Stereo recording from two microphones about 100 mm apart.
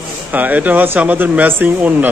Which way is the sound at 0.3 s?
15° right (ahead or behind).